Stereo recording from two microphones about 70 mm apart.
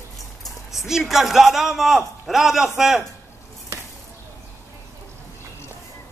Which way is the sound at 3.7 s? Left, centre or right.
Right.